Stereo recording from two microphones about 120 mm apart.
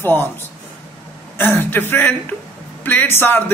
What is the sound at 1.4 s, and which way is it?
Speech, 15° left (ahead or behind).